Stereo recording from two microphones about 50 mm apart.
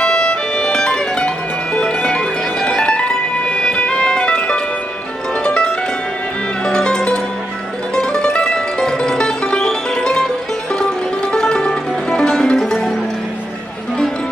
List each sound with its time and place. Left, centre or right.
0.0 s music: centre